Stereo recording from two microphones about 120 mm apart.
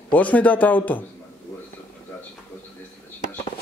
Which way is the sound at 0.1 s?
10° left (ahead or behind).